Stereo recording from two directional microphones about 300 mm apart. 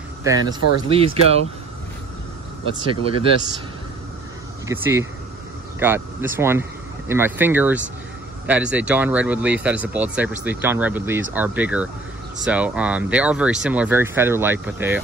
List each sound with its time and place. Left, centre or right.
0.2 s speech: centre
2.9 s speech: centre
4.6 s speech: centre